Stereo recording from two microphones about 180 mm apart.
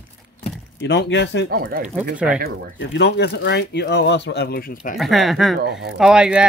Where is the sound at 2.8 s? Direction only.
75° left (ahead or behind); by 4.9 s 55° left (ahead or behind).